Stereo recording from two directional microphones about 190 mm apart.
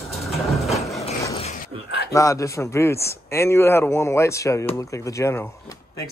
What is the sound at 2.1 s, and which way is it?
Speech, 15° left (ahead or behind).